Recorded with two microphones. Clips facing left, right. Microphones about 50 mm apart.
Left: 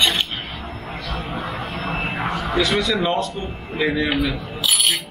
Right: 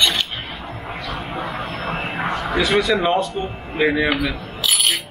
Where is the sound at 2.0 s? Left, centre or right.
Centre.